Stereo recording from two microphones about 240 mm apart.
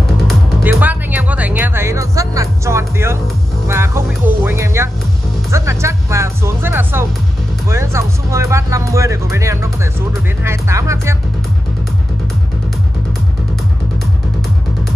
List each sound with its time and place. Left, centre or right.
0.3 s music: centre
3.6 s speech: centre